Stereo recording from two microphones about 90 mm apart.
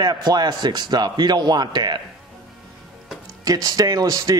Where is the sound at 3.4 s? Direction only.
40° right (ahead or behind).